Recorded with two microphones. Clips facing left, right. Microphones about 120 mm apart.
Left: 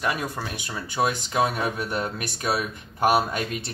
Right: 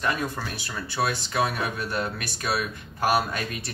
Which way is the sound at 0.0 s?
10° left (ahead or behind).